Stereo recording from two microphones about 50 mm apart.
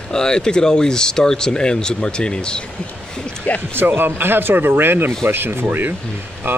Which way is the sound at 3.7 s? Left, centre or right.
Right.